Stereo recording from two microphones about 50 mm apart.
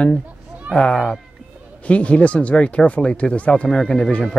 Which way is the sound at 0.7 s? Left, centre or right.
Right.